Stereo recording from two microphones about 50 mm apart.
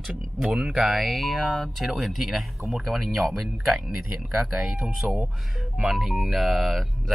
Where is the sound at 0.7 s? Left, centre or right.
Centre.